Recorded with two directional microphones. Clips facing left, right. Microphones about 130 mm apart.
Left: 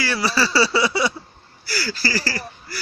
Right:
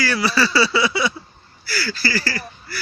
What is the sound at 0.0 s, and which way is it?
Speech, 30° left (ahead or behind).